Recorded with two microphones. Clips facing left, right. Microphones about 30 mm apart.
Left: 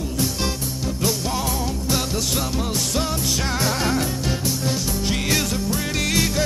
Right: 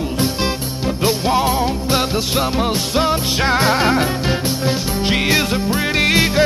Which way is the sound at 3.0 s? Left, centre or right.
Right.